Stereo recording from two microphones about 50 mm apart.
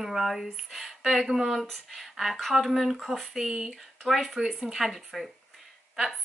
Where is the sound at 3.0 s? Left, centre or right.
Centre.